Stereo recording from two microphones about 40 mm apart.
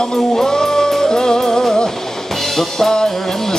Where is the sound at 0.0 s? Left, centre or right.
Centre.